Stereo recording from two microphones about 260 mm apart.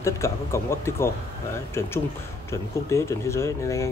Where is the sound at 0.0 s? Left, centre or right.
Centre.